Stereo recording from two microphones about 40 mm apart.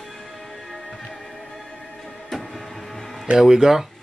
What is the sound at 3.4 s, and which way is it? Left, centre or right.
Speech, centre.